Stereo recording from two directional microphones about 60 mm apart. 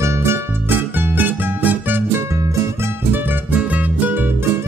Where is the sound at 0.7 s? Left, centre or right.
Right.